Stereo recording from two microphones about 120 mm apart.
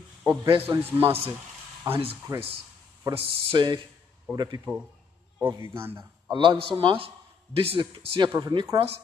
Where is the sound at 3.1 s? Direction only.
40° right (ahead or behind).